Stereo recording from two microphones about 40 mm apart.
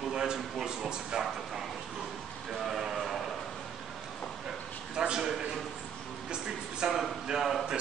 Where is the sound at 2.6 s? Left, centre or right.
Centre.